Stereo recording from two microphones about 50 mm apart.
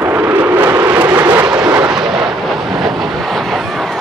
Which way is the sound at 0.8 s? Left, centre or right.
Right.